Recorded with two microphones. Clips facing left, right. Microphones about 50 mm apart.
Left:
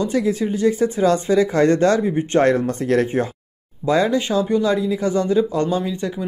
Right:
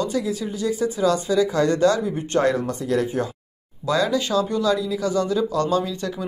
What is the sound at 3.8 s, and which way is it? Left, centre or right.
Speech, left.